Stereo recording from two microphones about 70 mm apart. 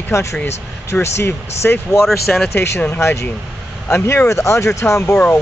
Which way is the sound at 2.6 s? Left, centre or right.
Left.